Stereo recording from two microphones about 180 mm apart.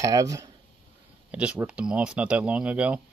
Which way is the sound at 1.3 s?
10° right (ahead or behind).